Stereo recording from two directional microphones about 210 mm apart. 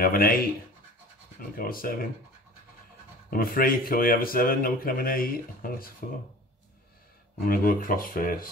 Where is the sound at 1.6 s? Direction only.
45° left (ahead or behind).